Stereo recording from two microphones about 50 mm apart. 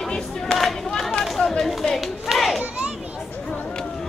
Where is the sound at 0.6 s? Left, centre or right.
Centre.